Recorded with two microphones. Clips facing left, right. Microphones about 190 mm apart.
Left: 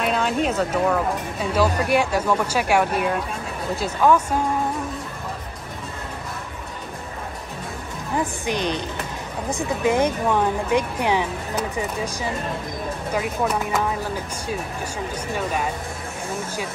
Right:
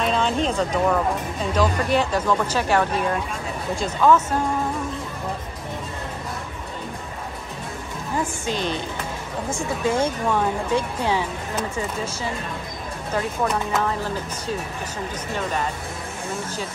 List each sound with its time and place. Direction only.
0.0 s speech: 5° left (ahead or behind)
8.2 s speech: 20° left (ahead or behind)
15.3 s speech: 10° left (ahead or behind)